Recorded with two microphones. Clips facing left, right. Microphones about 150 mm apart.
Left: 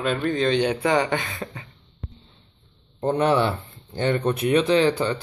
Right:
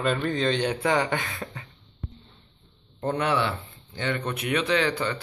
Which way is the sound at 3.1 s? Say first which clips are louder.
Left 6 dB; 35° left (ahead or behind).